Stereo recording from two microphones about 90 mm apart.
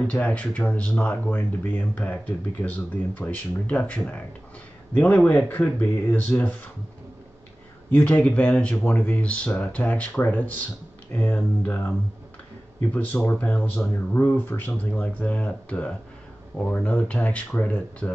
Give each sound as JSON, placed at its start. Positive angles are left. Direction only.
{"t": 0.0, "sound": "speech", "side_deg": 15}
{"t": 7.9, "sound": "speech", "side_deg": 15}
{"t": 12.9, "sound": "speech", "side_deg": 20}